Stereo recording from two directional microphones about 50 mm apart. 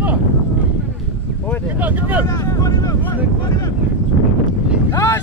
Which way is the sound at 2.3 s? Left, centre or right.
Left.